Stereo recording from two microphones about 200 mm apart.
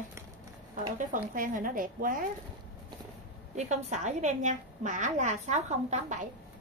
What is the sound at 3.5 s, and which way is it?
A woman's voice, 35° right (ahead or behind).